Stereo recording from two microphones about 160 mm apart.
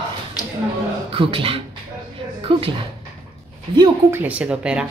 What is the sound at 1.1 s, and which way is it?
Speech, 35° right (ahead or behind).